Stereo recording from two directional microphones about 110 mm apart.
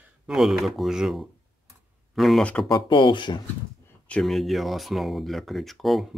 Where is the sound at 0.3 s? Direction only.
5° right (ahead or behind).